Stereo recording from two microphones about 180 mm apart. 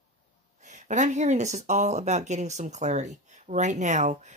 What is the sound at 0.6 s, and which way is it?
Speech, 40° right (ahead or behind).